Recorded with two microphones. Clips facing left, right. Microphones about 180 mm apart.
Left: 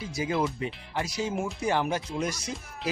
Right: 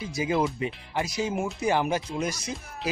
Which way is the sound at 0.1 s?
15° right (ahead or behind).